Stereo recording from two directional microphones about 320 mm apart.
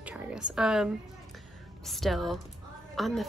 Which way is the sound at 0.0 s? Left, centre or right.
Centre.